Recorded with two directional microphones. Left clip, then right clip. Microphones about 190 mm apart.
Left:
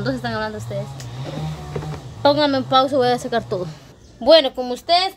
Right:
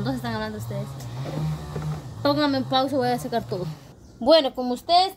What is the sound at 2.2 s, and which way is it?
A woman's voice, centre (ahead or behind).